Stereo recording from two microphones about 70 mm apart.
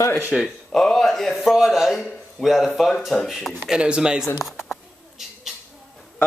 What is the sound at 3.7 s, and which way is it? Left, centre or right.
Speech, centre.